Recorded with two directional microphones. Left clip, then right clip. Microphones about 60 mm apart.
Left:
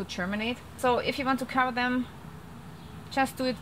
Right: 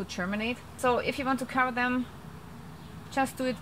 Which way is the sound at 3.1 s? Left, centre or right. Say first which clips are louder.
Left 1 dB; centre.